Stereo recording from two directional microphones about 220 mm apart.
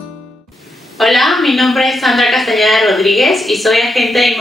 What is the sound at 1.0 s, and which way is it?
A woman's voice, centre (ahead or behind).